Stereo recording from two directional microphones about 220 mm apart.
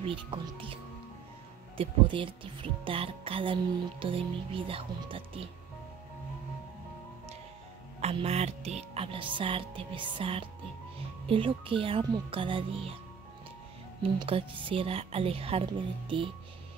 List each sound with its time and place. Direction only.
0.0 s speech: 25° right (ahead or behind)
1.8 s speech: 25° right (ahead or behind)
8.0 s speech: 30° right (ahead or behind)
14.2 s speech: 25° right (ahead or behind)